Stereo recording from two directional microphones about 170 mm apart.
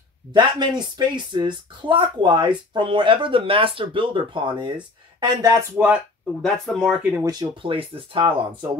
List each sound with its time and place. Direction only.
0.3 s speech: 25° right (ahead or behind)
6.4 s speech: centre (ahead or behind)
7.2 s speech: 25° right (ahead or behind)